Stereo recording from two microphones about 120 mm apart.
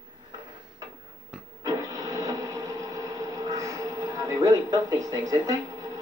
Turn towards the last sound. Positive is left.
turn(degrees=-30)  # may be behind; listen again after turning